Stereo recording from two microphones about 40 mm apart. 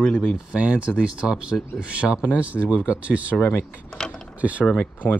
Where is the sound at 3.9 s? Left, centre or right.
Centre.